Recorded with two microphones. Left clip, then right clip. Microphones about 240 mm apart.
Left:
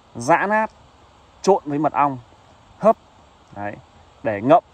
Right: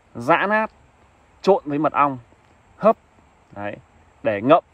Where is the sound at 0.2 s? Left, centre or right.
Centre.